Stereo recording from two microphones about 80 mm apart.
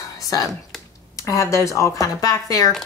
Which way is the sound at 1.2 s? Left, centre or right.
Left.